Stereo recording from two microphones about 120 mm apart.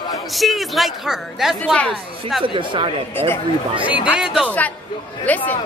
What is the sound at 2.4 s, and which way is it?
Speech, 45° right (ahead or behind).